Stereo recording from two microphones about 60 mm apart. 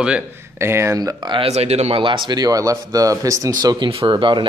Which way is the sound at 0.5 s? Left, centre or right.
Right.